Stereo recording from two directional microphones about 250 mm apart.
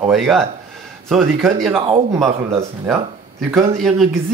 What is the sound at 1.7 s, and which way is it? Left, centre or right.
Speech, right.